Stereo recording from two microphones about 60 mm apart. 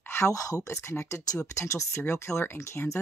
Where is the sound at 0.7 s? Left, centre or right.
Left.